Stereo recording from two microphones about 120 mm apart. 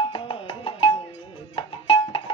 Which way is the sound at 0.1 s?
50° left (ahead or behind).